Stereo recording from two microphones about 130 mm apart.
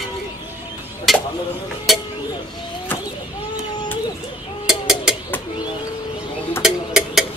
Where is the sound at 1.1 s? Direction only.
Centre (ahead or behind).